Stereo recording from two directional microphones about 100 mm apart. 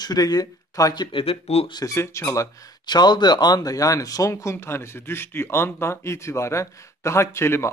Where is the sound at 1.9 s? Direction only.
25° left (ahead or behind).